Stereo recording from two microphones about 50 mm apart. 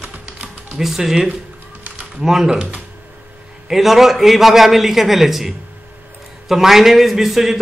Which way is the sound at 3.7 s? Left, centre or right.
Centre.